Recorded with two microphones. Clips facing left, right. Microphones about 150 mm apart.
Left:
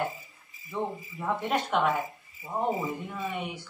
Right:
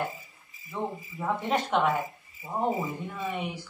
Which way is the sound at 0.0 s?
Centre (ahead or behind).